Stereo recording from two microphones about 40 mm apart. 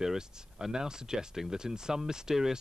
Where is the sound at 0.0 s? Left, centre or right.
Centre.